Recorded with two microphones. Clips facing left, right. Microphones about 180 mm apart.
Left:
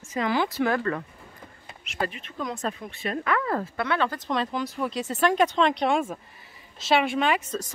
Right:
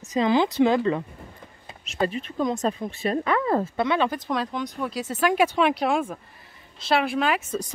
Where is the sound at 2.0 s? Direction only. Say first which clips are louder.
Right 6 dB; 35° right (ahead or behind); by 4.3 s 15° right (ahead or behind).